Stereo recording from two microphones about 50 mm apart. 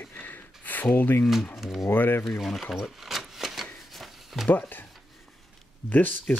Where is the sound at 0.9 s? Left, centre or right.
Left.